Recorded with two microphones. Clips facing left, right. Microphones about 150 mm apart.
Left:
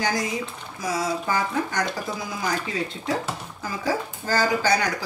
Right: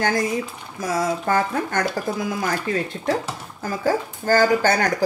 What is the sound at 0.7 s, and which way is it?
A woman's voice, 50° right (ahead or behind).